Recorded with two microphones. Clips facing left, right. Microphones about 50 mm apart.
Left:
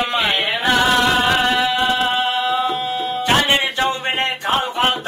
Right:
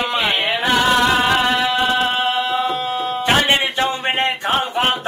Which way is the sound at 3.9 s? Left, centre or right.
Centre.